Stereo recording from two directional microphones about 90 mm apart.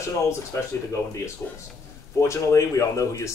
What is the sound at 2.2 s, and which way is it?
Speech, 35° left (ahead or behind).